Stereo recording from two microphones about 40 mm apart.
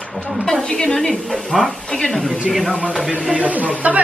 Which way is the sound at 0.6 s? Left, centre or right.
Centre.